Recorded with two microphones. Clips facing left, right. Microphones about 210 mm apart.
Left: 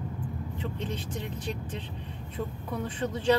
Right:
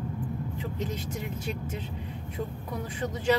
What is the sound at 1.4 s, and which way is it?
Speech, 10° right (ahead or behind).